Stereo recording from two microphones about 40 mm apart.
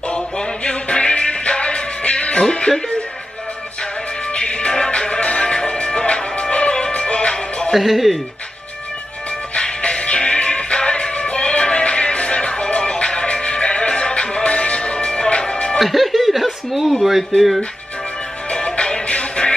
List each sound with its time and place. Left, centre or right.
0.7 s music: left
4.4 s music: left
7.7 s speech: centre
9.6 s music: left
15.8 s speech: centre
18.5 s music: left